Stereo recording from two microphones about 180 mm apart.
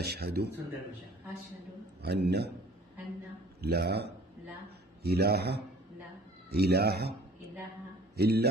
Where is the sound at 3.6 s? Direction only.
60° right (ahead or behind).